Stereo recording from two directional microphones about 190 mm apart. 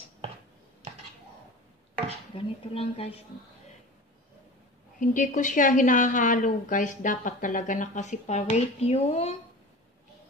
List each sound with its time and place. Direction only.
2.3 s speech: 30° left (ahead or behind)
5.0 s a woman's voice: 40° left (ahead or behind)